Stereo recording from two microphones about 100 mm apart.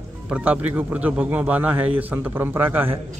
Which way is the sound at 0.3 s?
15° right (ahead or behind).